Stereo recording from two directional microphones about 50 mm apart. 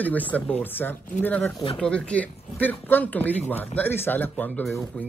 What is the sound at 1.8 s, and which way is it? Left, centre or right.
Speech, left.